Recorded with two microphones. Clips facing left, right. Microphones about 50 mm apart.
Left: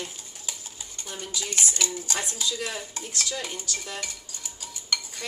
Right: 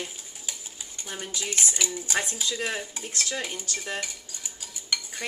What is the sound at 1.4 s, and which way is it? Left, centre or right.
Dishes, centre.